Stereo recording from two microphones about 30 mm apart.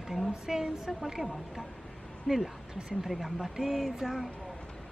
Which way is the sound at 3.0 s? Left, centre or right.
Centre.